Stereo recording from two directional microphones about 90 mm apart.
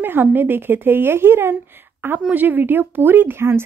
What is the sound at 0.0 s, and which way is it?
Speech, 20° right (ahead or behind).